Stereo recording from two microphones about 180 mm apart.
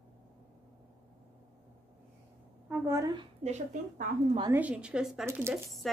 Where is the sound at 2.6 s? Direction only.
10° right (ahead or behind).